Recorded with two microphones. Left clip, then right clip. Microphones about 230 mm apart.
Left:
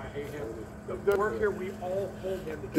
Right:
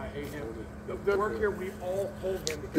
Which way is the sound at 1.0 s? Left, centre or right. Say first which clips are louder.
Left 1 dB; right.